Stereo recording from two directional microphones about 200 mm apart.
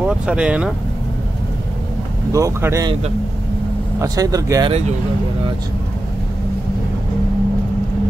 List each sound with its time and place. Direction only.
0.0 s speech: 5° right (ahead or behind)
2.3 s speech: 15° right (ahead or behind)
4.0 s speech: 20° right (ahead or behind)